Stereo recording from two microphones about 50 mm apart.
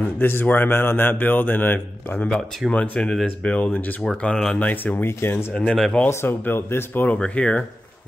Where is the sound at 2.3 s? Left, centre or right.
Centre.